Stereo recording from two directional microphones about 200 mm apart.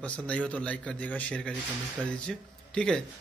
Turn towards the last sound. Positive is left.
turn(degrees=5)  # may be behind; listen again after turning